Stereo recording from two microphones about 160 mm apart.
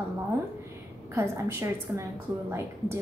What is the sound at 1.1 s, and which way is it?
Speech, 15° right (ahead or behind).